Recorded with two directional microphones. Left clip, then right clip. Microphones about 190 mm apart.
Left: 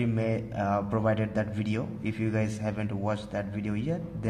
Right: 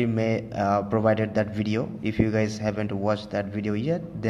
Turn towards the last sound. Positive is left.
turn(degrees=-15)  # may be behind; listen again after turning